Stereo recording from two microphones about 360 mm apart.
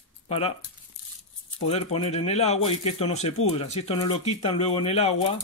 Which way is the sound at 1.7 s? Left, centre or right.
Centre.